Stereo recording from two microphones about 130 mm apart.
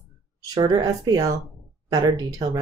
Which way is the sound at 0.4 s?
30° right (ahead or behind).